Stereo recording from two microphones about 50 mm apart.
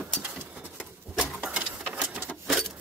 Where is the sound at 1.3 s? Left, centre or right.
Right.